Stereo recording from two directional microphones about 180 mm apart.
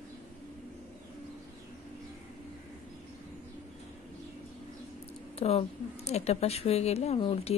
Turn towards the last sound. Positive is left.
turn(degrees=30)  # may be behind; listen again after turning